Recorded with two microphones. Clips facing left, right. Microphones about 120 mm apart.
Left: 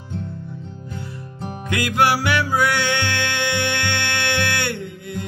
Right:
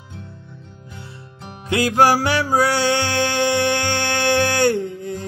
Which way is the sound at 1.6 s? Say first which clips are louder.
Right 4 dB; 30° right (ahead or behind).